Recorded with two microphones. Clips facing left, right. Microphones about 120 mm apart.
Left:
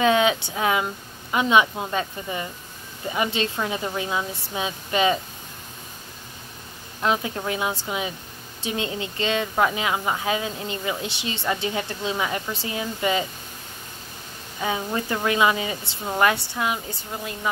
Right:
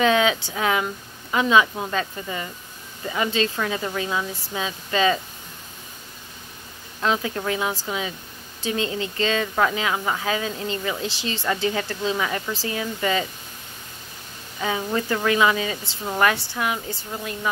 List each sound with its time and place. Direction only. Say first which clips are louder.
0.0 s a woman's voice: even; 20° left (ahead or behind)
7.0 s a woman's voice: even; 20° left (ahead or behind)
14.6 s a woman's voice: right 1 dB; 20° left (ahead or behind)